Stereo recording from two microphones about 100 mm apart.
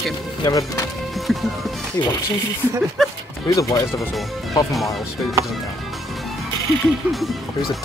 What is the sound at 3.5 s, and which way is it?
Speech, 35° left (ahead or behind).